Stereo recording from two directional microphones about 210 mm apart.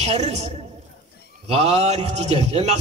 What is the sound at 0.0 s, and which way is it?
Speech, 30° right (ahead or behind).